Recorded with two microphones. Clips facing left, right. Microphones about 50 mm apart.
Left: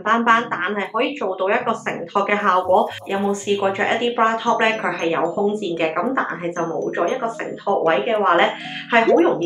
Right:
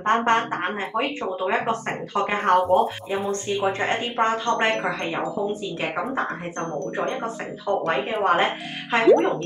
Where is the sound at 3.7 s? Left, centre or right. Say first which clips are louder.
Left 5 dB; left.